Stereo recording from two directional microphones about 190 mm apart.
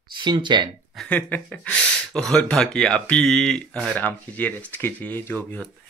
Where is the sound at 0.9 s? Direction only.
5° left (ahead or behind).